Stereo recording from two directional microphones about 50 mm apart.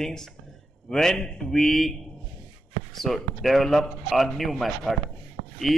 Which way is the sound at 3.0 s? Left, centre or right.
Centre.